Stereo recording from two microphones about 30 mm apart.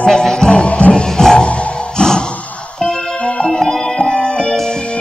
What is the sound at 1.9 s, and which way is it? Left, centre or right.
Music, left.